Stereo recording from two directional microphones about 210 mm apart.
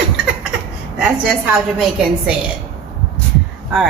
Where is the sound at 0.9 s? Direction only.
5° right (ahead or behind).